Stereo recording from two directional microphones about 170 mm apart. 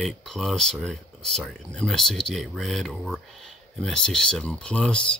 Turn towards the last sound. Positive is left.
turn(degrees=5)  # may be behind; listen again after turning